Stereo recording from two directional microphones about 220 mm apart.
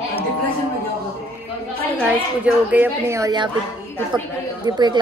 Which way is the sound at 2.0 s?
5° right (ahead or behind).